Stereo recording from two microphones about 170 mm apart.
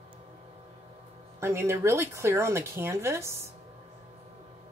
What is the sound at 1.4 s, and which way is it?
Speech, 15° right (ahead or behind).